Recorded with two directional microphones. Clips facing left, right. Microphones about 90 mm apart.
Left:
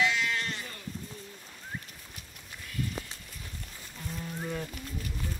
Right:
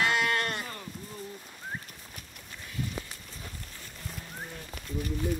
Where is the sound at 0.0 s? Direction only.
55° right (ahead or behind).